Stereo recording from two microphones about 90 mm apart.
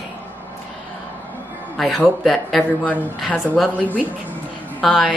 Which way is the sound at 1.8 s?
Centre (ahead or behind).